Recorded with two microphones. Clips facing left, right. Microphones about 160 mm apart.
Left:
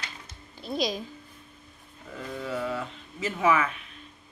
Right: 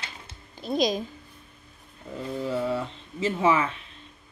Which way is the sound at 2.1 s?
25° right (ahead or behind).